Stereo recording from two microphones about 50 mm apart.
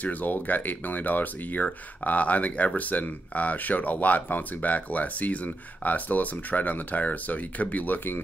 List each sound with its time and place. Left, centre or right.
0.0 s speech: left